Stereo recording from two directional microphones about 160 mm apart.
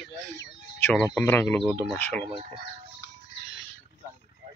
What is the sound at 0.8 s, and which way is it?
Speech, 10° left (ahead or behind).